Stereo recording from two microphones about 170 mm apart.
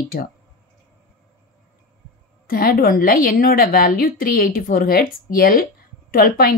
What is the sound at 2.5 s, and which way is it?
A woman's voice, 60° left (ahead or behind).